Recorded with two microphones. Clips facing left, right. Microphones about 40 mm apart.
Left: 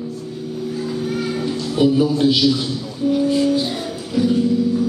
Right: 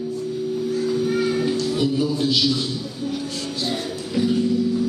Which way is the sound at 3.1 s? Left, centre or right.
Centre.